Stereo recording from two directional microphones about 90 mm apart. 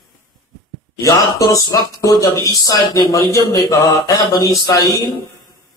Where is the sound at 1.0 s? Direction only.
40° left (ahead or behind).